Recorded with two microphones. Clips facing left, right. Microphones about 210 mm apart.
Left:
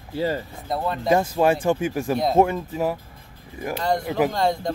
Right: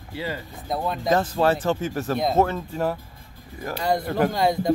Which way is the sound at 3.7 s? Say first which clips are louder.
Even; 5° right (ahead or behind).